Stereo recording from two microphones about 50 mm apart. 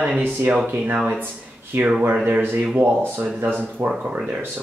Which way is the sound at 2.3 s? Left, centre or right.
Right.